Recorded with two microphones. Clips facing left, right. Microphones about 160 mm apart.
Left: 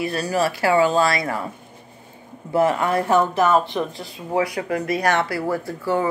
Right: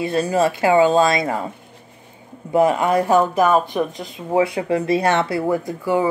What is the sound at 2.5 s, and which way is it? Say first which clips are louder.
Speech: right 3 dB; 20° right (ahead or behind).